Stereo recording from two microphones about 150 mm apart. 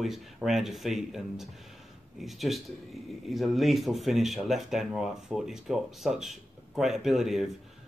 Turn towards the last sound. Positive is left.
turn(degrees=0)  # may be behind; listen again after turning